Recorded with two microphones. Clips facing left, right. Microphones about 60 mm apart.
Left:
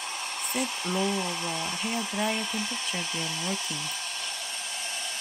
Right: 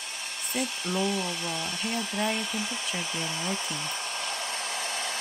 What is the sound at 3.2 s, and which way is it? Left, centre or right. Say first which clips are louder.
Hair dryer: right 1 dB; centre.